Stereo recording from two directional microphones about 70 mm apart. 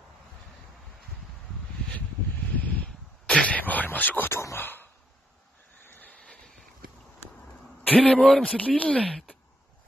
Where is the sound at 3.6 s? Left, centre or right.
Left.